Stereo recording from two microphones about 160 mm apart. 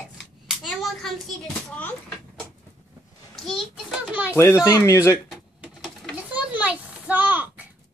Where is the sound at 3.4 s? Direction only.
Centre (ahead or behind).